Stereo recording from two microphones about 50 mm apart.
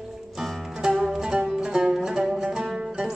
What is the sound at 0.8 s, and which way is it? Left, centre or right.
Music, centre.